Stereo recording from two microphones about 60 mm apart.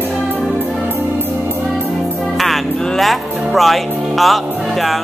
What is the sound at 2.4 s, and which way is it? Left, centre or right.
Music, centre.